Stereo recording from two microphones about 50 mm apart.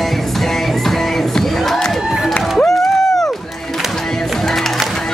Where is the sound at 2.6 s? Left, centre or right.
Centre.